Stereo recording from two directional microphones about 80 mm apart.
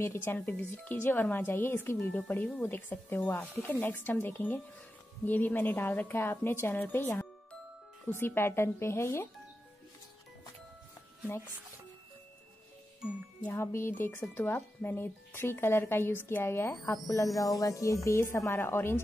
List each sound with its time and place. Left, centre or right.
0.0 s a woman's voice: left
13.5 s speech: left
17.4 s a woman's voice: left